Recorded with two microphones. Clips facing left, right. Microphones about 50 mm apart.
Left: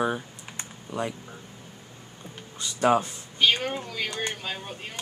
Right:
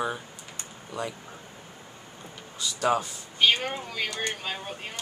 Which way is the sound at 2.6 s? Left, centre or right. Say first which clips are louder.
Left 3 dB; left.